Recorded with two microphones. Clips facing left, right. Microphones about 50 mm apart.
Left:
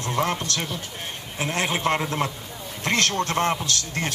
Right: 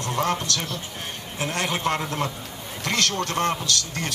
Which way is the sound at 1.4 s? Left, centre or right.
Left.